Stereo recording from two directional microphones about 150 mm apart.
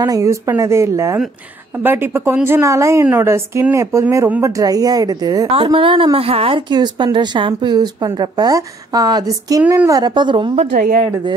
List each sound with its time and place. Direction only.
0.0 s speech: 20° right (ahead or behind)
5.5 s a woman's voice: 35° right (ahead or behind)
10.8 s speech: 50° right (ahead or behind)